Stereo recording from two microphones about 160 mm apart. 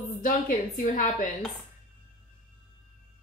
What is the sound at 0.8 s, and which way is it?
Speech, 55° left (ahead or behind).